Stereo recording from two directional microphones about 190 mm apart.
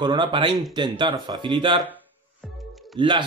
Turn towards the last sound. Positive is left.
turn(degrees=-25)  # may be behind; listen again after turning